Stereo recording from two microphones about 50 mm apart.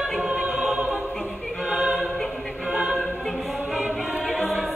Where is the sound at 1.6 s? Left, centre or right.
Centre.